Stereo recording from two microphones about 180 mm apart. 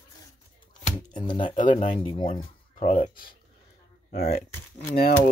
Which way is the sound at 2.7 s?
40° left (ahead or behind).